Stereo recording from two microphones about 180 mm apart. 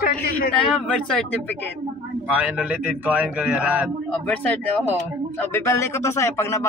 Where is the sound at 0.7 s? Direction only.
5° left (ahead or behind).